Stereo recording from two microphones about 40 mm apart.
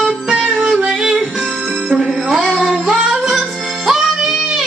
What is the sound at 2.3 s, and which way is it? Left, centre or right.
Music, centre.